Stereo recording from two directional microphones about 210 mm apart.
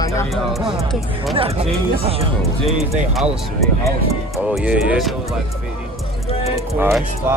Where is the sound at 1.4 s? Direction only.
25° right (ahead or behind).